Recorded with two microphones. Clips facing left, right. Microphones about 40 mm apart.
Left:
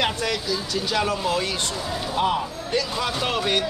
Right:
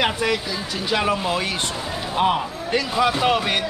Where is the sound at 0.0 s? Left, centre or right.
Centre.